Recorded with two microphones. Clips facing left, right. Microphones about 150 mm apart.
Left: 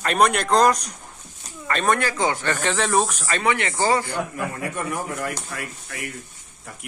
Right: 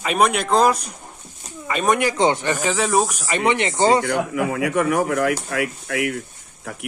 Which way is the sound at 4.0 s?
85° right.